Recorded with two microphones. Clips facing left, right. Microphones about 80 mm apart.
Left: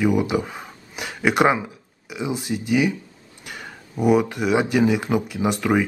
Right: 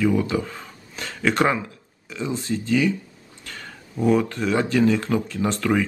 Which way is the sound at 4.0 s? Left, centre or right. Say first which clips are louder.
Left 2 dB; centre.